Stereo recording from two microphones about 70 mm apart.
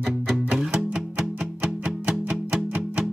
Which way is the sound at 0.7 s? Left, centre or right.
Centre.